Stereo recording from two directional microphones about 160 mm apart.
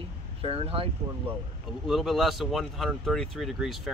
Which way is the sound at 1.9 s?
Centre (ahead or behind).